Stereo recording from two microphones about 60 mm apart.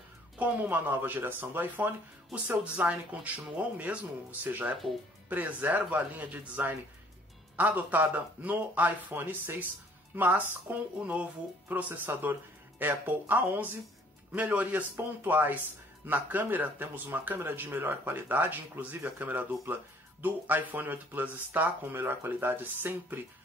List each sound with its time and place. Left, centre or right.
0.4 s speech: right